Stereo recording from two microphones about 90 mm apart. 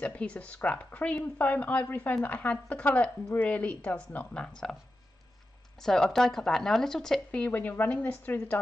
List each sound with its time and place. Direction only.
0.0 s speech: 15° left (ahead or behind)
5.8 s speech: 5° left (ahead or behind)